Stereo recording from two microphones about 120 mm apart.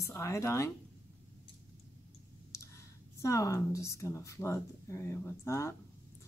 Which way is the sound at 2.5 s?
25° left (ahead or behind).